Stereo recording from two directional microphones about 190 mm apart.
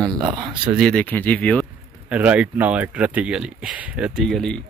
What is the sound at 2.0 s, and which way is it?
Speech, 5° right (ahead or behind).